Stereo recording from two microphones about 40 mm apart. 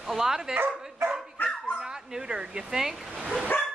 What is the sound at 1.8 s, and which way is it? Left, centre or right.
Speech, centre.